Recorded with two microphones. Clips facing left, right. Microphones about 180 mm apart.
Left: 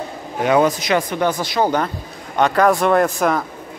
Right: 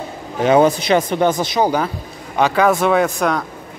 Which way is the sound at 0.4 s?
25° right (ahead or behind).